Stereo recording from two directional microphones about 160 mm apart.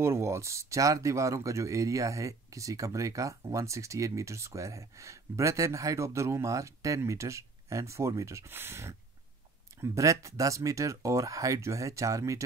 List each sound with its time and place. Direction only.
0.0 s speech: 15° right (ahead or behind)